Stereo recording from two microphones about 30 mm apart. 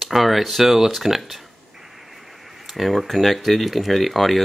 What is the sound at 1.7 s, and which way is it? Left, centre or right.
Radio, centre.